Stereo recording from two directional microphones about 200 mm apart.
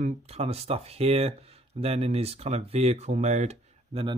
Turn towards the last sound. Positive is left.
turn(degrees=-30)  # may be behind; listen again after turning